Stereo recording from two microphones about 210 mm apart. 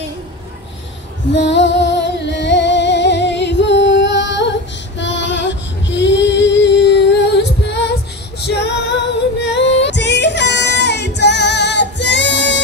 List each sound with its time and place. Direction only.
1.3 s music: 60° left (ahead or behind)
8.4 s female singing: 50° left (ahead or behind)